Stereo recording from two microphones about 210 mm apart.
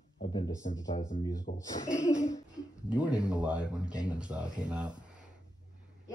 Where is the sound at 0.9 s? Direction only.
35° left (ahead or behind).